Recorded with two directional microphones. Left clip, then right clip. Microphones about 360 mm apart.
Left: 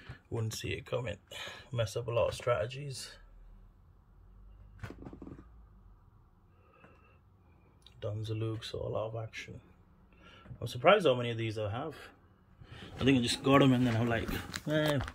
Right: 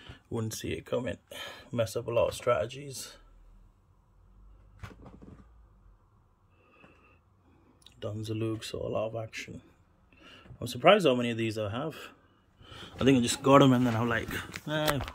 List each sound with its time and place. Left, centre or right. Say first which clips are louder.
0.0 s a sound: right 4 dB; centre
0.8 s speech: right 4 dB; centre
7.8 s speech: right 2 dB; right; by 14.8 s centre